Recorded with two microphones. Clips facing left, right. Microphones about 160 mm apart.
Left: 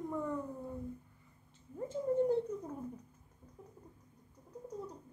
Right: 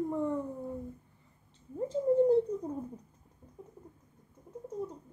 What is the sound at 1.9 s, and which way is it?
Speech, 35° right (ahead or behind).